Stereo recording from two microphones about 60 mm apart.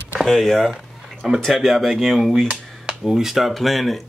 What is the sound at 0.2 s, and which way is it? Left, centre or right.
Speech, centre.